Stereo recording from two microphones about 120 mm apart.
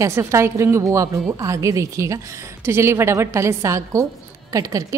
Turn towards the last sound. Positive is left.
turn(degrees=-25)  # may be behind; listen again after turning